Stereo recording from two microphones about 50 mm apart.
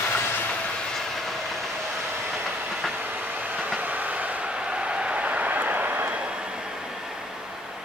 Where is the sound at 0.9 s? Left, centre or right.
Centre.